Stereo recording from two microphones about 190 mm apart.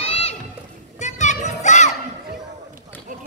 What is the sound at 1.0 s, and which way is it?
Children playing, 40° left (ahead or behind).